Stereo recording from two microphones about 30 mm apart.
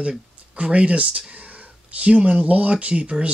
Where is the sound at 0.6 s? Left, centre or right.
Right.